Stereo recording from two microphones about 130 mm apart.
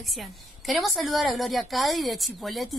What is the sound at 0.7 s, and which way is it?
A woman's voice, centre (ahead or behind).